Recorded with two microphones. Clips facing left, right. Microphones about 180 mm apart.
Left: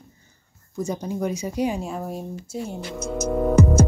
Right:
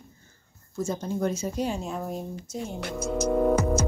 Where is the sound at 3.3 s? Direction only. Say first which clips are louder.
Left 4 dB; centre (ahead or behind).